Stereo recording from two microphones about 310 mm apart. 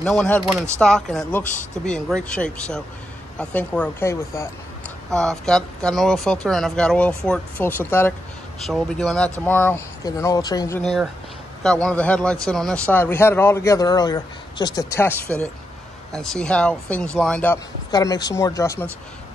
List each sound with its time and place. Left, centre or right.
0.0 s a man's voice: centre